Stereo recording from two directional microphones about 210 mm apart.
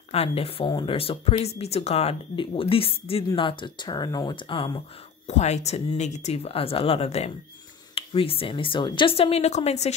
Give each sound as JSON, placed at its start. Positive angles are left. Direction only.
{"t": 0.1, "sound": "speech", "side_deg": 30}